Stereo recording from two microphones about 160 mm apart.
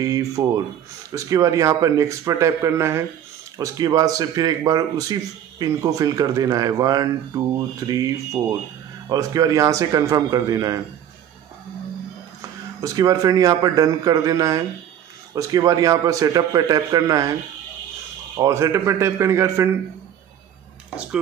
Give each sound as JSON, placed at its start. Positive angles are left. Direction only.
{"t": 0.0, "sound": "speech", "side_deg": -20}
{"t": 12.4, "sound": "speech", "side_deg": -20}
{"t": 18.4, "sound": "speech", "side_deg": -20}